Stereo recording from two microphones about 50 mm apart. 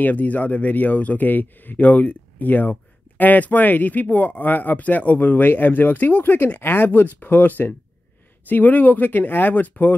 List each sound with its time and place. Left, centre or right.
0.0 s speech: left